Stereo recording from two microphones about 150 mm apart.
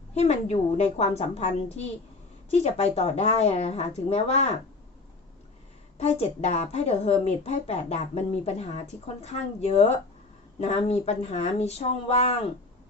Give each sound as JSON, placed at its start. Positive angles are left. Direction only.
{"t": 0.1, "sound": "a woman's voice", "side_deg": 45}
{"t": 5.9, "sound": "a woman's voice", "side_deg": 45}